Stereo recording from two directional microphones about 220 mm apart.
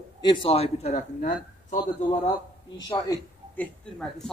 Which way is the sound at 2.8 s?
20° left (ahead or behind).